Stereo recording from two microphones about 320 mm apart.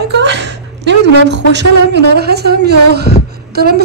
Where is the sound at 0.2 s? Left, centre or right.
Right.